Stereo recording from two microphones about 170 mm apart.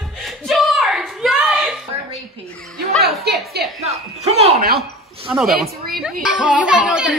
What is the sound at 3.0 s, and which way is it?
Speech, 65° right (ahead or behind).